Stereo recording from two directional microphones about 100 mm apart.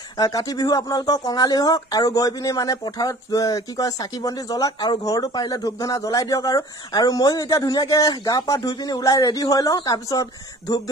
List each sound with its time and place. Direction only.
0.2 s speech: 40° left (ahead or behind)